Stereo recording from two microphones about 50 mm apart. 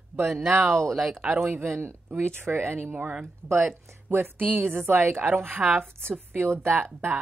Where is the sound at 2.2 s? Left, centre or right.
Right.